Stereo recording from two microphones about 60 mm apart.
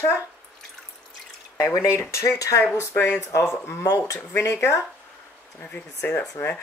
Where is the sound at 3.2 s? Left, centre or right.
Left.